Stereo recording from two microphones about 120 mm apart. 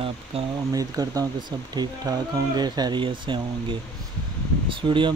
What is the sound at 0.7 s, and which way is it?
Speech, 30° right (ahead or behind).